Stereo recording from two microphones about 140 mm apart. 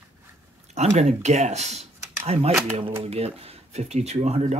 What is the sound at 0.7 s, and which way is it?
Speech, 50° right (ahead or behind).